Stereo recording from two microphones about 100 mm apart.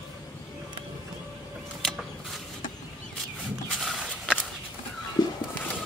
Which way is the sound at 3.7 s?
Centre (ahead or behind).